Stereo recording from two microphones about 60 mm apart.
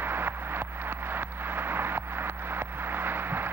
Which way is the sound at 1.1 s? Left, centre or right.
Right.